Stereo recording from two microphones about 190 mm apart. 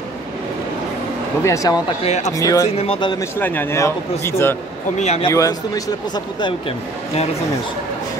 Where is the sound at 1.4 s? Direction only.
20° left (ahead or behind).